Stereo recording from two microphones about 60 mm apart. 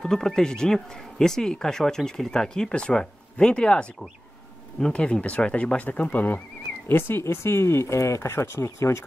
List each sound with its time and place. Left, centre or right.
0.0 s speech: centre; by 8.3 s left
8.3 s speech: left